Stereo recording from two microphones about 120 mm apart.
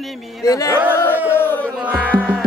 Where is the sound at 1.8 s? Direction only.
10° right (ahead or behind).